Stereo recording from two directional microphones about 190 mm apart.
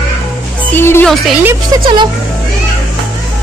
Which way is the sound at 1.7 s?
20° right (ahead or behind).